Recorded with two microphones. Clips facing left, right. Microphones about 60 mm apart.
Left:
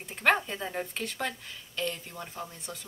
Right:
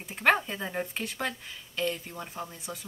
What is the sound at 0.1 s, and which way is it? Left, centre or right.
A woman's voice, centre.